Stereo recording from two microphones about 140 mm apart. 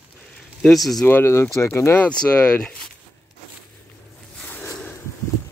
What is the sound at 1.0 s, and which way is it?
Speech, 15° left (ahead or behind).